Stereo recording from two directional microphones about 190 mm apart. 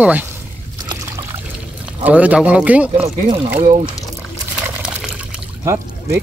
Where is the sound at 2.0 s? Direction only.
5° right (ahead or behind).